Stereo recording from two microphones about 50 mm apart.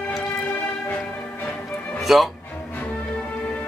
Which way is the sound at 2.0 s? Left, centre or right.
Centre.